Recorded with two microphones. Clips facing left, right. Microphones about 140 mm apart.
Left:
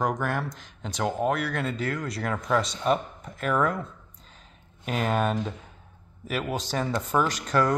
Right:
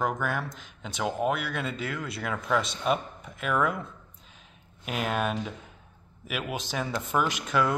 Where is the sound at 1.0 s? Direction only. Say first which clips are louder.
Left 2 dB; 5° right (ahead or behind).